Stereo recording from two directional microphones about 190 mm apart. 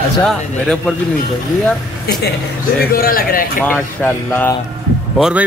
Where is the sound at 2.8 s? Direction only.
50° left (ahead or behind).